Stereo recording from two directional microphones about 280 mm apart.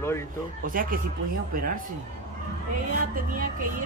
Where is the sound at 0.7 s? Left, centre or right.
Right.